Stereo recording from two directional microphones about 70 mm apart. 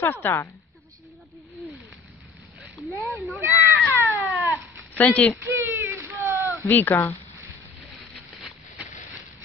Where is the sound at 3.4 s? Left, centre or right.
Right.